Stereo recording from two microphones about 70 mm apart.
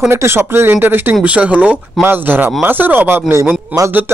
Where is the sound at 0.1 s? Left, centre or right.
Right.